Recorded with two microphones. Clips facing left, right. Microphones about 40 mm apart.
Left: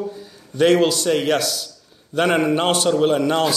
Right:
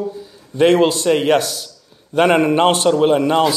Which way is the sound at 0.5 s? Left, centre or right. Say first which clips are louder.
Right 3 dB; right.